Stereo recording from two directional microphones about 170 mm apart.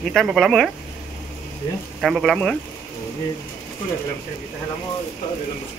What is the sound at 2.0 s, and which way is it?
Speech, centre (ahead or behind).